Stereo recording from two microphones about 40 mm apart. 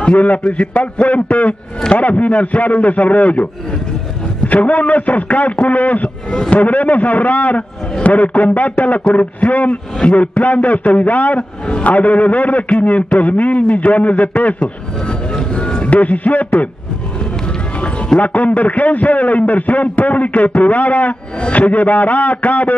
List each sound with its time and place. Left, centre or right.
0.0 s a man's voice: left
1.0 s a man's voice: left
4.5 s a man's voice: left
14.6 s speech: left
16.0 s a man's voice: left
17.7 s clip-clop: left
18.2 s speech: left